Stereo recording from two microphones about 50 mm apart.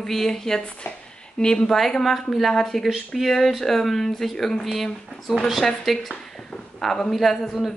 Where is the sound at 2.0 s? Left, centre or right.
Centre.